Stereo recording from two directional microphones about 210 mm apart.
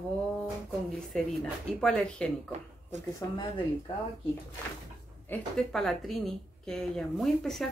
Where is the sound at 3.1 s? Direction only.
20° left (ahead or behind).